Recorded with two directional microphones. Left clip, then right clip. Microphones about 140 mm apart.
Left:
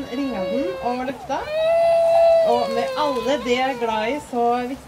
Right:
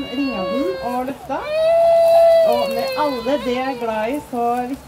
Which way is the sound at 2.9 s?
30° left (ahead or behind).